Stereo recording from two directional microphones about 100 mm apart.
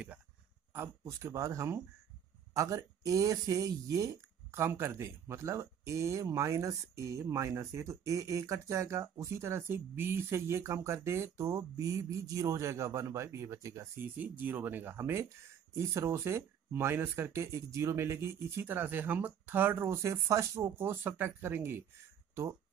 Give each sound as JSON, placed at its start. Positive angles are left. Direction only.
{"t": 0.7, "sound": "speech", "side_deg": -30}
{"t": 14.1, "sound": "speech", "side_deg": -15}